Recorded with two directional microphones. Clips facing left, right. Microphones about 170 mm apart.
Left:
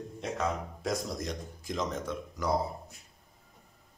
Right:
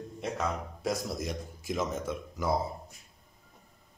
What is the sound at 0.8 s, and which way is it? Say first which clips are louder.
Speech: right 1 dB; 5° right (ahead or behind).